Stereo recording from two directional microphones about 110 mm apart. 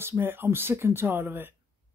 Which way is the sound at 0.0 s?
20° right (ahead or behind).